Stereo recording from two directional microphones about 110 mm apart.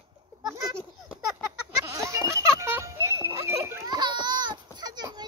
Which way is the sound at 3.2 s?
25° right (ahead or behind).